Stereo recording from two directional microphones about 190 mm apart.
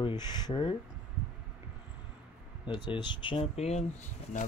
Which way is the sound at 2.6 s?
25° left (ahead or behind).